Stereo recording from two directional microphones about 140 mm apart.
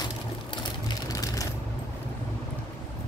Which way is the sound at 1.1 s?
25° left (ahead or behind).